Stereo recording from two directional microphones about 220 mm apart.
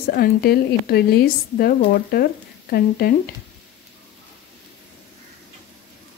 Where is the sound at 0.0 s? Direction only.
45° left (ahead or behind).